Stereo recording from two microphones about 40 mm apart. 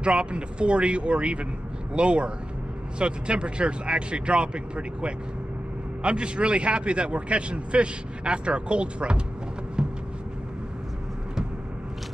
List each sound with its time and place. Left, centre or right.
0.0 s a man's voice: right
9.8 s vehicle: right